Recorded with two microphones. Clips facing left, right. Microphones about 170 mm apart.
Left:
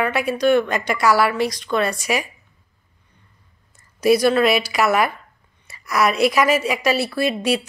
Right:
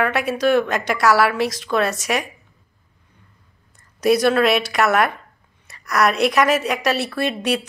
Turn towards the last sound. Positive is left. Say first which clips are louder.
# left 1 dB
turn(degrees=0)  # may be behind; listen again after turning